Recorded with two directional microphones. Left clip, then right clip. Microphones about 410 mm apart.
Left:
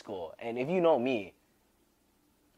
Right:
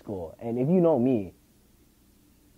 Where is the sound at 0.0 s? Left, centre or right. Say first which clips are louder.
Right 3 dB; centre.